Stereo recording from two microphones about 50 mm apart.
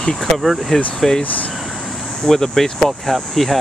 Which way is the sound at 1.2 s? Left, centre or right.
Left.